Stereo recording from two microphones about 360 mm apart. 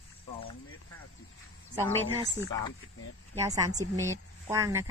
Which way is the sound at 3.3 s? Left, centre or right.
Centre.